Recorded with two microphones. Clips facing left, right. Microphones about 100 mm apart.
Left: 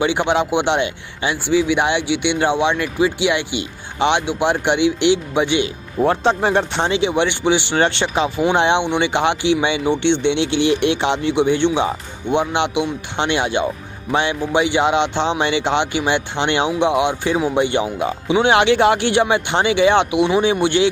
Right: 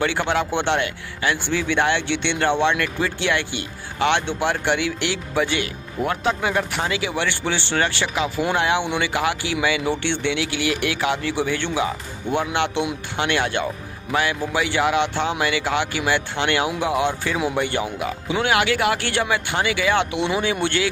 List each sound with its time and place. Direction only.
0.0 s speech: 20° left (ahead or behind)
6.0 s speech: 30° left (ahead or behind)